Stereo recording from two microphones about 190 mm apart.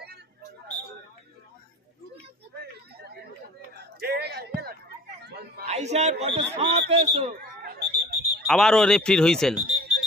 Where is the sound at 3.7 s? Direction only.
60° right (ahead or behind).